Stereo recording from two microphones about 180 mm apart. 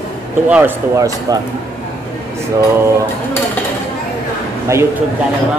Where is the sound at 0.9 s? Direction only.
20° right (ahead or behind).